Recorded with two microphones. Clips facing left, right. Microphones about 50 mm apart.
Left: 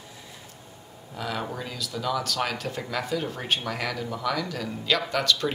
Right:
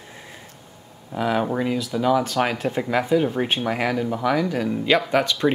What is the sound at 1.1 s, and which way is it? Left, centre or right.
Speech, right.